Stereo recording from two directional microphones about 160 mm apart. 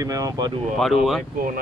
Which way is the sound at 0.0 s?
20° right (ahead or behind).